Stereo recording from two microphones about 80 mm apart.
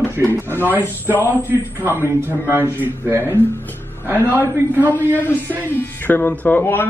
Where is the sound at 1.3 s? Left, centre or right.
Right.